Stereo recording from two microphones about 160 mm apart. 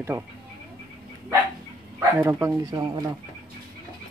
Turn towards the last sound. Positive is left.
turn(degrees=-25)  # may be behind; listen again after turning